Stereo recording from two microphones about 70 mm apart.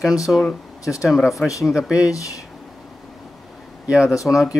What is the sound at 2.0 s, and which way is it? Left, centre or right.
Speech, left.